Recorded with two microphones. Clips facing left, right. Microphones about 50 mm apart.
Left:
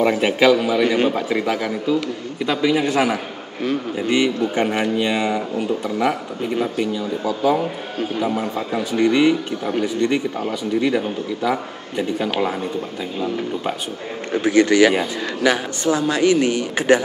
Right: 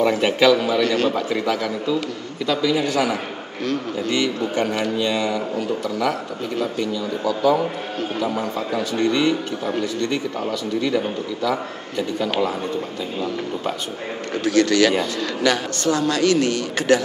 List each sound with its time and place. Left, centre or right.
0.0 s a man's voice: centre
11.4 s speech: left
14.3 s a man's voice: centre